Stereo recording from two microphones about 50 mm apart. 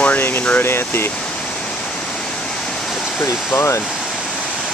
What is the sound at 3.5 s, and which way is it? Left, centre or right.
Speech, left.